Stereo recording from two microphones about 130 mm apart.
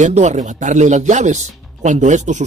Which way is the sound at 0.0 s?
65° right (ahead or behind).